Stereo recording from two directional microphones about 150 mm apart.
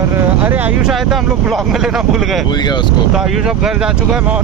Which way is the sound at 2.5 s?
30° left (ahead or behind).